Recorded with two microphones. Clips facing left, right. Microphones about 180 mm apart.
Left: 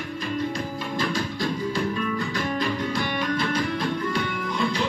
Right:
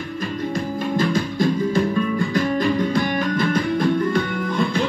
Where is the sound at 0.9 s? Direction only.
50° right (ahead or behind).